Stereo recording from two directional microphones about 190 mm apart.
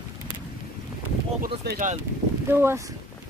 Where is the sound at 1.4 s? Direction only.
45° right (ahead or behind).